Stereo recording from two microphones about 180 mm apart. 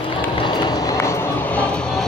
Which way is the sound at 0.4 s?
25° left (ahead or behind).